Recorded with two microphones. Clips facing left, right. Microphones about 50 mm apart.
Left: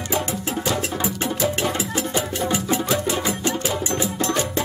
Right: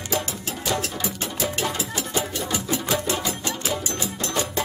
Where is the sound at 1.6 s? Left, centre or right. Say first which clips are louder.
Left 4 dB; left.